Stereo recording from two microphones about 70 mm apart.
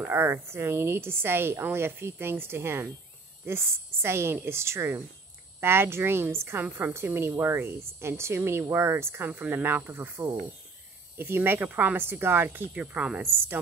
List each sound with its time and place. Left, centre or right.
0.0 s a woman's voice: right; by 13.2 s centre